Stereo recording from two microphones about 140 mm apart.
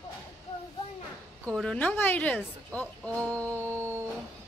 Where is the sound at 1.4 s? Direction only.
5° left (ahead or behind).